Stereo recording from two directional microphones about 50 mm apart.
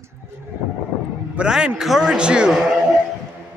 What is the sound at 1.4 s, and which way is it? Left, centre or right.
Speech, right.